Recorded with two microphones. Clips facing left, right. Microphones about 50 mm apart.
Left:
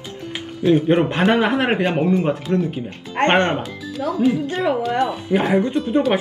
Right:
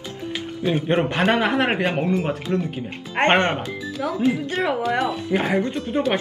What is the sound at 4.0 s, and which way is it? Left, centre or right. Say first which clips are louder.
Speech: left 3 dB; right.